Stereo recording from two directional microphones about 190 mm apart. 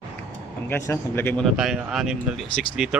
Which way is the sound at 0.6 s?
10° left (ahead or behind).